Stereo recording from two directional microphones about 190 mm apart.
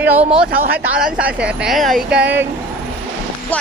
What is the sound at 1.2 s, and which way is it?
Speech, 5° right (ahead or behind).